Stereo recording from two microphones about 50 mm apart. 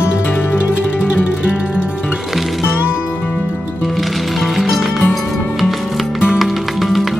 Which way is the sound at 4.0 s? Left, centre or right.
Centre.